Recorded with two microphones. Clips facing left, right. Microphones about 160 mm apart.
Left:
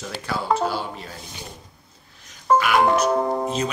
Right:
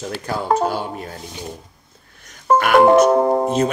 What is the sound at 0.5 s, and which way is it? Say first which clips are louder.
Speech: right 4 dB; 45° right (ahead or behind).